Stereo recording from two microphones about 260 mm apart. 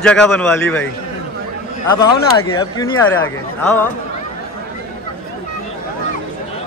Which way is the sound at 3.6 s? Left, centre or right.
Centre.